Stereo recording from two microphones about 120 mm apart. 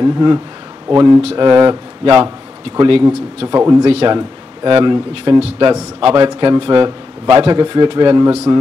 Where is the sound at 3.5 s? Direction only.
25° right (ahead or behind).